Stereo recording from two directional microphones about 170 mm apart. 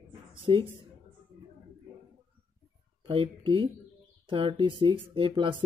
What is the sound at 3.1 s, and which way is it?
Speech, 30° right (ahead or behind).